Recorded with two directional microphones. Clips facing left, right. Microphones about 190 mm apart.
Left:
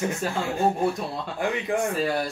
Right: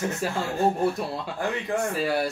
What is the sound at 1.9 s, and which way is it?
Speech, 5° right (ahead or behind).